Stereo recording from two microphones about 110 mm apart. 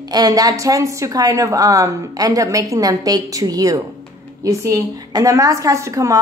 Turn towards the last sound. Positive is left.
turn(degrees=-30)  # may be behind; listen again after turning